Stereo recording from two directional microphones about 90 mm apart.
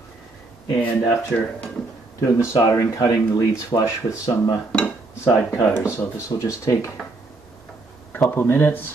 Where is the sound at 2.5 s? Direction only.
40° left (ahead or behind).